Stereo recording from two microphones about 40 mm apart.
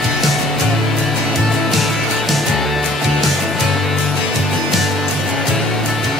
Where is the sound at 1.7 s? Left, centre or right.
Centre.